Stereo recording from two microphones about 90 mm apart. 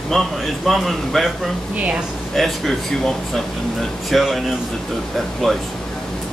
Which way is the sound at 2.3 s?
Centre (ahead or behind).